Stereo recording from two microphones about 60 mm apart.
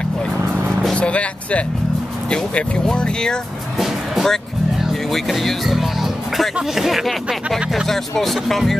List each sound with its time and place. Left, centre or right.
0.9 s music: left
2.3 s speech: centre
3.7 s music: centre
5.1 s speech: centre